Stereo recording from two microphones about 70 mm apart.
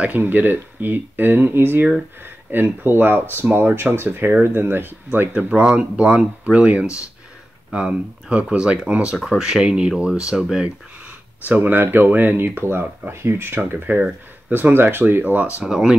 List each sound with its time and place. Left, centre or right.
0.0 s speech: right
5.8 s speech: centre
15.6 s speech: centre